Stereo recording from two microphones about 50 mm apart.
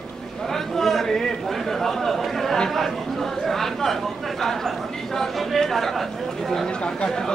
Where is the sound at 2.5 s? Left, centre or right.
Centre.